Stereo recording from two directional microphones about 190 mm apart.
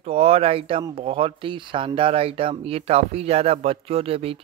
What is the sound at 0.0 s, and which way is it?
Speech, 30° right (ahead or behind).